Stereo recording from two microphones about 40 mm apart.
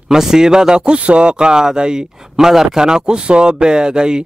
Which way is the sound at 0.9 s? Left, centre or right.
Right.